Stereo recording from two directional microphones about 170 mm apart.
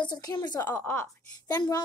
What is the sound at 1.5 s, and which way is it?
Speech, 25° left (ahead or behind).